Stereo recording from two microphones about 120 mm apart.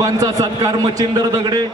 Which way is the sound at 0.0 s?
30° right (ahead or behind).